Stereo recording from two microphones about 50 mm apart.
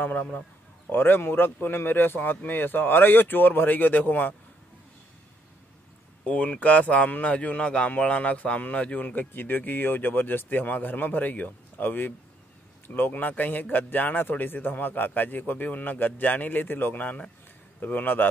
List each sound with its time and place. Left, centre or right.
0.0 s speech: left
0.8 s speech: left
6.2 s speech: left
9.1 s speech: left